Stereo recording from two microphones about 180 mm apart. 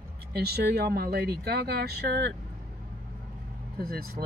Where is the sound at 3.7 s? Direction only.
55° right (ahead or behind).